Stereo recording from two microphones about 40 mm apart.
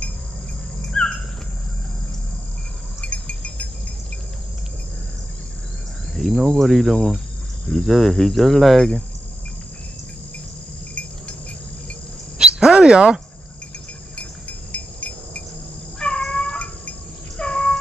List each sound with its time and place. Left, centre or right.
1.0 s dog: centre
3.0 s a sound: left
6.1 s speech: centre
7.7 s speech: centre
12.4 s a sound: centre
14.7 s insect: left
16.3 s cat: left
16.5 s a sound: left
17.4 s cat: left